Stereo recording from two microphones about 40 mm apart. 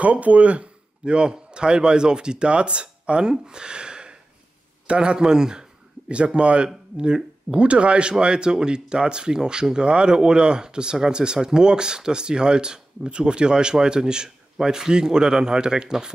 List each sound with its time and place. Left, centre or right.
0.0 s a man's voice: right; by 5.7 s centre
6.0 s speech: right